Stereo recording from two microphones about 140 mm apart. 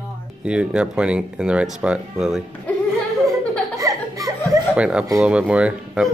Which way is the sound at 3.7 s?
25° right (ahead or behind).